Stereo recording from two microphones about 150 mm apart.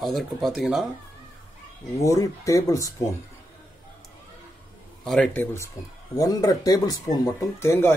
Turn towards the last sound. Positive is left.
turn(degrees=15)  # may be behind; listen again after turning